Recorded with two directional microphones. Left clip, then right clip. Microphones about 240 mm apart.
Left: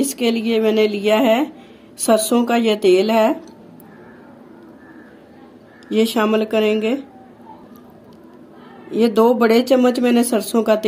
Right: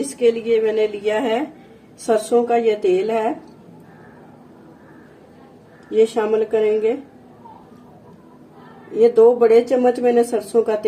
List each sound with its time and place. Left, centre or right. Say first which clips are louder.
0.2 s speech: right 3 dB; left
5.9 s speech: right 1 dB; left
8.9 s speech: right 2 dB; left